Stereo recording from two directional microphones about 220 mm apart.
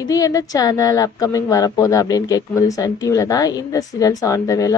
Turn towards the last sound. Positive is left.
turn(degrees=15)  # may be behind; listen again after turning